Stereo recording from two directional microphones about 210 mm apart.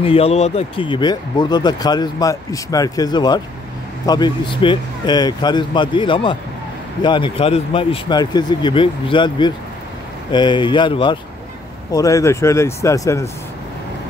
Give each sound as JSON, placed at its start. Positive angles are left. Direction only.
{"t": 0.0, "sound": "speech", "side_deg": 25}